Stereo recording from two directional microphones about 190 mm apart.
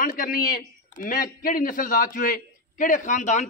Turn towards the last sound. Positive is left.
turn(degrees=40)  # may be behind; listen again after turning